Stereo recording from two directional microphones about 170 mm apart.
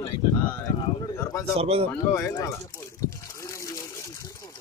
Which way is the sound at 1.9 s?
15° left (ahead or behind).